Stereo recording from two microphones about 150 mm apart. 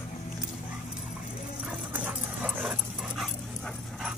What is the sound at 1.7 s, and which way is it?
Dog, 10° right (ahead or behind).